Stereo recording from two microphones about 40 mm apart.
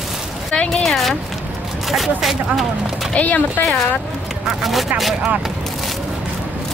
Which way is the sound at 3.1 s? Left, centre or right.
Left.